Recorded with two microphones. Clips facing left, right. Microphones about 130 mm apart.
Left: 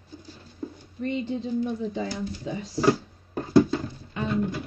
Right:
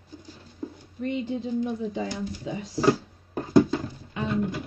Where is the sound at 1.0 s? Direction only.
5° right (ahead or behind).